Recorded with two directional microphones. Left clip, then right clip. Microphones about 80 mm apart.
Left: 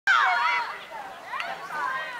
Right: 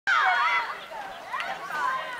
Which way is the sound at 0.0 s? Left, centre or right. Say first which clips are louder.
Left 2 dB; left.